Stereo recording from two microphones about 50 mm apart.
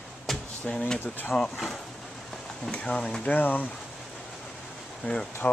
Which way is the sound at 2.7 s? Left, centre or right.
Left.